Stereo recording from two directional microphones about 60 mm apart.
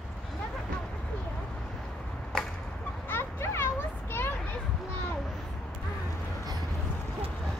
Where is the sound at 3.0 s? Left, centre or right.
Left.